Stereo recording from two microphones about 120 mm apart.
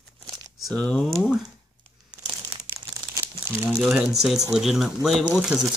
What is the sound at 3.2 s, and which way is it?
Crumpling, 20° right (ahead or behind).